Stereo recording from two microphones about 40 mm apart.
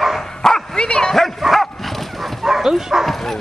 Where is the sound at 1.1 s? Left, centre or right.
Centre.